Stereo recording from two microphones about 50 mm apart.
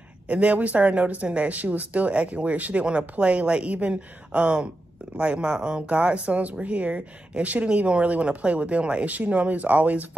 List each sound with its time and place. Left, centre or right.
0.3 s speech: right